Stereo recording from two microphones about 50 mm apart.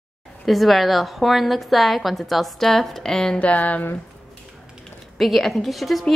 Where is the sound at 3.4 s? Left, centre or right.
Left.